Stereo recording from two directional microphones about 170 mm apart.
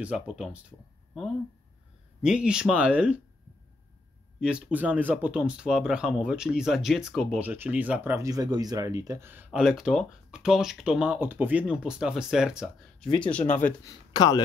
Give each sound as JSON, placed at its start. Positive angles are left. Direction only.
{"t": 0.0, "sound": "speech", "side_deg": -5}
{"t": 4.4, "sound": "speech", "side_deg": -5}
{"t": 13.8, "sound": "speech", "side_deg": 25}